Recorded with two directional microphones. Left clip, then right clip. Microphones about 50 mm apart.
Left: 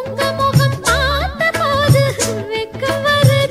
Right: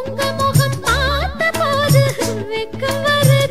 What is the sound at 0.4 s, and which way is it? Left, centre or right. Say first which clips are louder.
Music: left 2 dB; centre.